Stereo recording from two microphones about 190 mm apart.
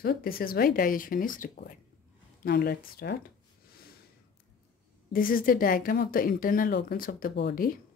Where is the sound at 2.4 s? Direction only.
60° left (ahead or behind).